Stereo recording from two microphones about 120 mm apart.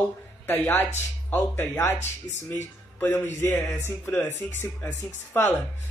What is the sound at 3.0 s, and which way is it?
Speech, 20° left (ahead or behind).